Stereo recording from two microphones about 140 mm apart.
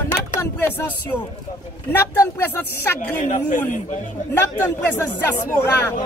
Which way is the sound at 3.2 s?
65° left (ahead or behind).